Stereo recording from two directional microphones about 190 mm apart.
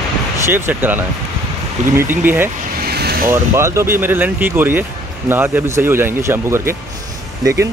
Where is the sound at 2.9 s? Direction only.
55° right (ahead or behind).